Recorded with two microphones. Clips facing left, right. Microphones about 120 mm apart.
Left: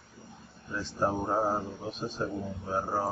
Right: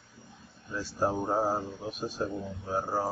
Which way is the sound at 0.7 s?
10° right (ahead or behind).